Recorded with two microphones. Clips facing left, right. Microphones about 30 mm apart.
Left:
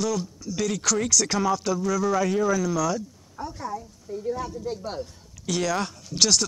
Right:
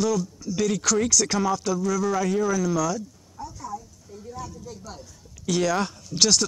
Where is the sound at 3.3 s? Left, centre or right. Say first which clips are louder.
Left 3 dB; left.